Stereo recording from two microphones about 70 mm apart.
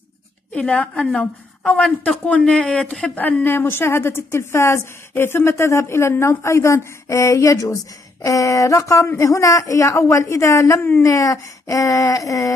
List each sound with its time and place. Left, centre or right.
0.5 s a woman's voice: centre; by 11.1 s left
11.1 s a man's voice: left